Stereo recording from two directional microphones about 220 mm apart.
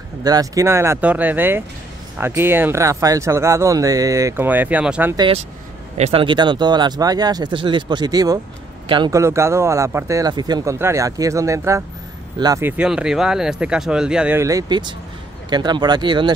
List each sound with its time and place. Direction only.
0.2 s speech: 15° right (ahead or behind)
5.1 s speech: 20° right (ahead or behind)